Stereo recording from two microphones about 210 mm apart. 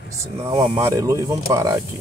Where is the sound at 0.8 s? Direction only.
15° right (ahead or behind).